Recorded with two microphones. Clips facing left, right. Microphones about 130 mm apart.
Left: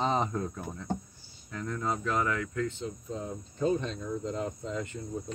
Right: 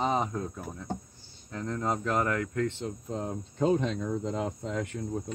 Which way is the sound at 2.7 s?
70° right (ahead or behind).